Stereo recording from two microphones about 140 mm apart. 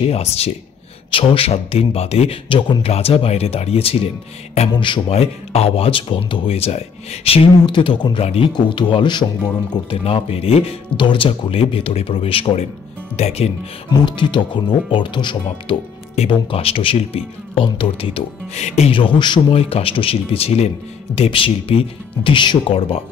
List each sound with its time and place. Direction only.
0.0 s a man's voice: 45° left (ahead or behind)
13.8 s speech: 35° left (ahead or behind)